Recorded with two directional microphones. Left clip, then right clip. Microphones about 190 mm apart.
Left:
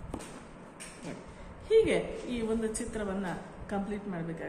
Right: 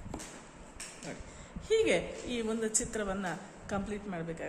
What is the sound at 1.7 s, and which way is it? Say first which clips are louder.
A woman's voice: left 3 dB; 60° right (ahead or behind).